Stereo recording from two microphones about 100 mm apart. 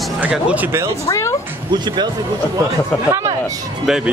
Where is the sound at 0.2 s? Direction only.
15° right (ahead or behind).